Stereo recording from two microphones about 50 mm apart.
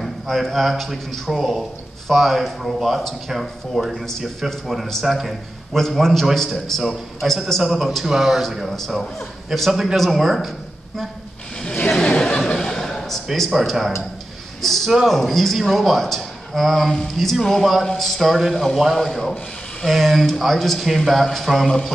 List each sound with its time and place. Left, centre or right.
0.0 s a man's voice: centre
4.5 s a sound: centre
5.0 s a man's voice: centre
8.1 s a man's voice: centre
8.5 s a man's voice: centre
12.0 s chuckle: centre
14.6 s a sound: centre
15.0 s a man's voice: centre
16.9 s a sound: centre
17.9 s a man's voice: centre